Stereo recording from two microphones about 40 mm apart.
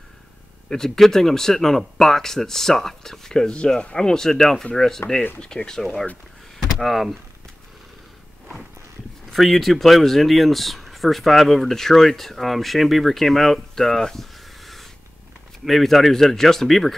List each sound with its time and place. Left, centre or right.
0.7 s speech: centre
5.4 s speech: left
6.8 s speech: centre
9.3 s speech: centre